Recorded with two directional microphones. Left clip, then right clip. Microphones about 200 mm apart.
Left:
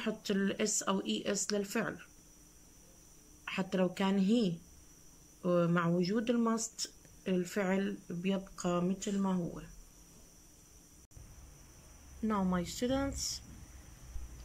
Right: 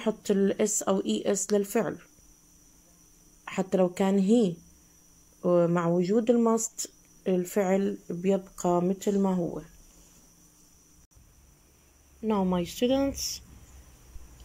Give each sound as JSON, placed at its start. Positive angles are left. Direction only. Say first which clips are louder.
{"t": 0.0, "sound": "speech", "louder": "right 9 dB", "side_deg": -15}
{"t": 3.4, "sound": "speech", "louder": "right 8 dB", "side_deg": -15}
{"t": 12.2, "sound": "speech", "louder": "right 7 dB", "side_deg": -15}